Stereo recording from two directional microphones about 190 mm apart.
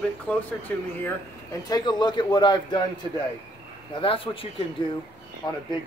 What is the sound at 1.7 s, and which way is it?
Speech, 20° left (ahead or behind).